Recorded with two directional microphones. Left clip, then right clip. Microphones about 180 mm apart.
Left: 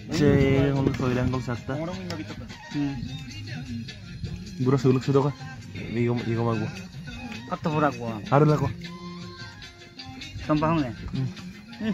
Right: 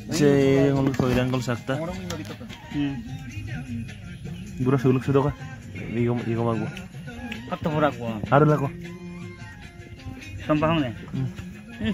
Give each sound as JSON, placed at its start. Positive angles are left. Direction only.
{"t": 0.1, "sound": "speech", "side_deg": -5}
{"t": 1.3, "sound": "speech", "side_deg": -25}
{"t": 4.6, "sound": "speech", "side_deg": 15}
{"t": 10.4, "sound": "speech", "side_deg": 5}